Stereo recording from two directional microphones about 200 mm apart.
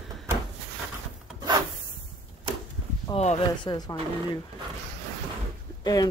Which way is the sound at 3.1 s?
30° left (ahead or behind).